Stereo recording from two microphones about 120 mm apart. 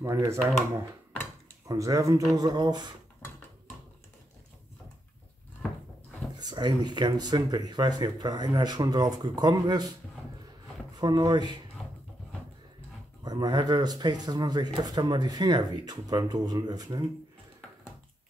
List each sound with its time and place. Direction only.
0.0 s speech: 25° right (ahead or behind)
1.7 s speech: 25° right (ahead or behind)
6.4 s speech: 35° right (ahead or behind)
11.0 s speech: 35° right (ahead or behind)
13.2 s speech: 35° right (ahead or behind)